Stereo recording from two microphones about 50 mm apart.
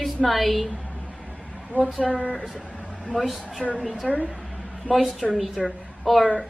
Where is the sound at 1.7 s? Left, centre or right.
Right.